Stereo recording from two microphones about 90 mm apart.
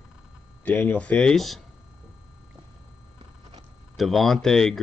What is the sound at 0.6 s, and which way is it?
Speech, 25° left (ahead or behind).